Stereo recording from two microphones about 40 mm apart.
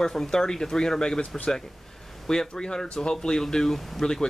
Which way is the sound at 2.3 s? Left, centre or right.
Centre.